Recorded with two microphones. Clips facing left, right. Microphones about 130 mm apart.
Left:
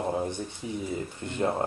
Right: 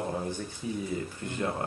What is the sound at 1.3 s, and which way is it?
Speech, 25° left (ahead or behind).